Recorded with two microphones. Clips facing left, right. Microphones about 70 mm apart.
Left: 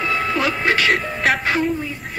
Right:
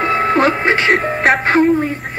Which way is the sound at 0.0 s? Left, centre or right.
Right.